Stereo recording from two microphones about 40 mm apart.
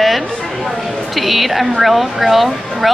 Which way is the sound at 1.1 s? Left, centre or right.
Centre.